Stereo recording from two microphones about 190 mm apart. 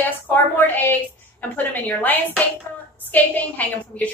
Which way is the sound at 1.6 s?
10° left (ahead or behind).